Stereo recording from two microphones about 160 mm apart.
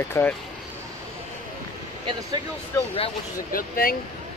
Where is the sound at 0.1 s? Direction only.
10° left (ahead or behind).